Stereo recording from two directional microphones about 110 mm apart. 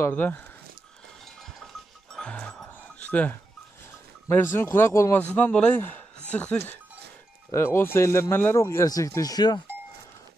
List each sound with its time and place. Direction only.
0.0 s speech: 15° left (ahead or behind)
2.1 s music: 10° left (ahead or behind)
3.0 s speech: 15° left (ahead or behind)
5.2 s speech: 10° left (ahead or behind); by 9.6 s 40° left (ahead or behind)